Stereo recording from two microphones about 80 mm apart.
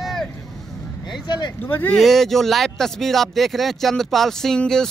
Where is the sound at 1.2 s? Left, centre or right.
Left.